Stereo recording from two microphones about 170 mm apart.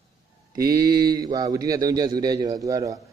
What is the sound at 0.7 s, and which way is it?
A man's voice, 25° right (ahead or behind).